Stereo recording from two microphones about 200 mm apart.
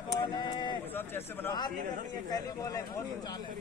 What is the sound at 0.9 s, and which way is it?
Speech, 10° left (ahead or behind).